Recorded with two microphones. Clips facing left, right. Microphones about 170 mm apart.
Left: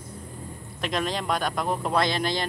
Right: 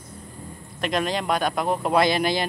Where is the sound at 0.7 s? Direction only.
Centre (ahead or behind).